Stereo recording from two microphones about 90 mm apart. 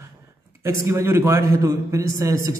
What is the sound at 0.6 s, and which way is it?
A man's voice, 30° right (ahead or behind).